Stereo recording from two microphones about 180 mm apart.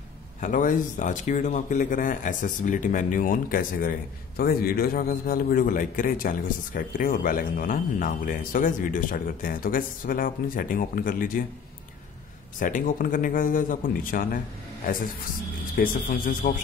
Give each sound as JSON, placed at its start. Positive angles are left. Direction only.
{"t": 0.4, "sound": "a man's voice", "side_deg": 45}
{"t": 12.5, "sound": "a man's voice", "side_deg": 45}
{"t": 15.7, "sound": "a man's voice", "side_deg": 50}